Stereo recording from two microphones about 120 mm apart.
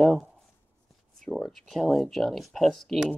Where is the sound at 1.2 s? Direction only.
Centre (ahead or behind).